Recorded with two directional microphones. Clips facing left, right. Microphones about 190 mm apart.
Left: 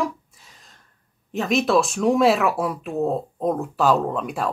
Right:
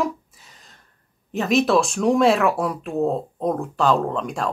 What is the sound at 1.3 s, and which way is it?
Speech, centre (ahead or behind).